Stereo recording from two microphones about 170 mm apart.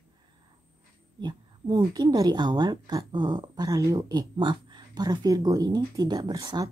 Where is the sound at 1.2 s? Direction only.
25° right (ahead or behind).